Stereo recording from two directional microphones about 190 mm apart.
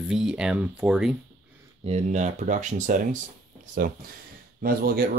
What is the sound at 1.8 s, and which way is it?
Speech, 35° right (ahead or behind).